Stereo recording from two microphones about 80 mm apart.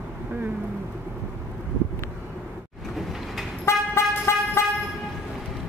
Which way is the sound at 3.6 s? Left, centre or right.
Left.